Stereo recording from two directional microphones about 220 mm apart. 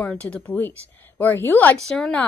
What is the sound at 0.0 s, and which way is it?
A woman's voice, 5° left (ahead or behind).